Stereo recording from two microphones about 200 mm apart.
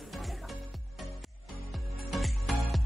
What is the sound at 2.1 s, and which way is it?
Music, centre (ahead or behind).